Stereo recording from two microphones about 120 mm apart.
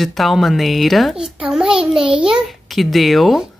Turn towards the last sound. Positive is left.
turn(degrees=0)  # may be behind; listen again after turning